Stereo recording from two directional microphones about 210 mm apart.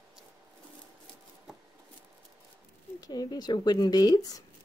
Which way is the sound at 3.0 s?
20° left (ahead or behind).